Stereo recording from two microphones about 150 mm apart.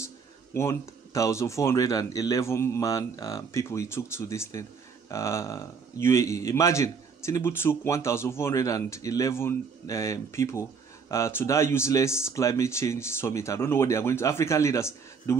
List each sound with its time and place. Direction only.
0.0 s a man's voice: 15° left (ahead or behind)